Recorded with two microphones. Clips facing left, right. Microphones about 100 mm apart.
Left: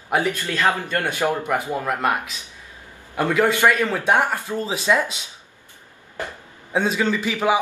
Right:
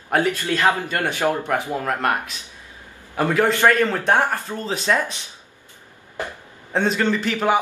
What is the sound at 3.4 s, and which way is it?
Speech, 15° left (ahead or behind).